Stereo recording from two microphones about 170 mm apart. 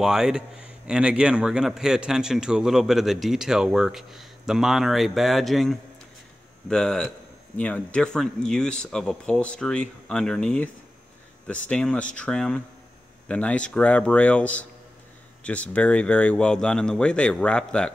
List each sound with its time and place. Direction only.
0.0 s a man's voice: 5° right (ahead or behind)